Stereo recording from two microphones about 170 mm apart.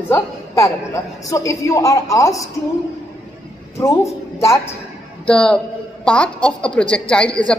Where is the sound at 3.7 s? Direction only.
20° left (ahead or behind).